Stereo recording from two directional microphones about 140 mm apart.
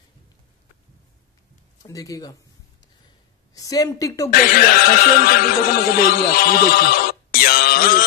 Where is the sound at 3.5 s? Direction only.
25° left (ahead or behind).